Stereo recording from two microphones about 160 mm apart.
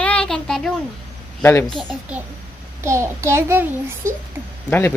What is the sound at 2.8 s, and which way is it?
A child's voice, 20° right (ahead or behind).